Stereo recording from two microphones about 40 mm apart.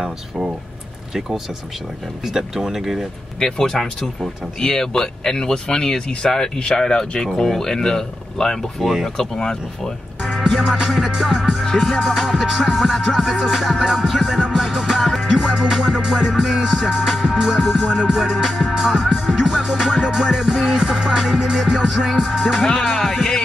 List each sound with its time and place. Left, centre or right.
2.2 s music: centre
3.3 s speech: centre
10.3 s music: centre
11.6 s speech: centre
12.0 s music: centre
18.3 s music: centre
22.6 s speech: centre